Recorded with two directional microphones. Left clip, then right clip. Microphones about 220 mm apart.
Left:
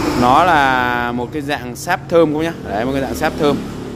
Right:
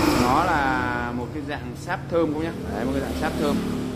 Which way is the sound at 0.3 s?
50° left (ahead or behind).